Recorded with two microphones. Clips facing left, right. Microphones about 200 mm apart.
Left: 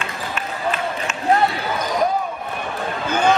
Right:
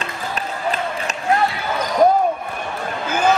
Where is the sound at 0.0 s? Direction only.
35° right (ahead or behind).